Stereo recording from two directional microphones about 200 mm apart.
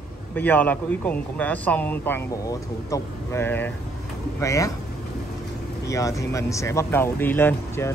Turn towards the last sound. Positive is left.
turn(degrees=10)  # may be behind; listen again after turning